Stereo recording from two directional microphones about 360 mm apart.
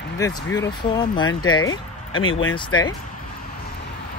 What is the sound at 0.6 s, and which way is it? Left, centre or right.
Speech, centre.